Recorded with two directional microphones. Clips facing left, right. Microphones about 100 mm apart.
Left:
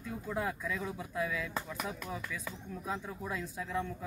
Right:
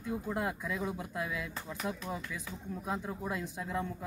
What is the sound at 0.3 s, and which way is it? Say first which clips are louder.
A man's voice: left 2 dB; 15° right (ahead or behind).